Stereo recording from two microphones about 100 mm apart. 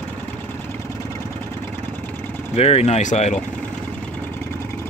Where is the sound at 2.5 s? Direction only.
90° left.